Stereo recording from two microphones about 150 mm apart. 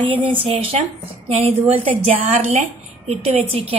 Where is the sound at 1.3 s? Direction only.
50° right (ahead or behind).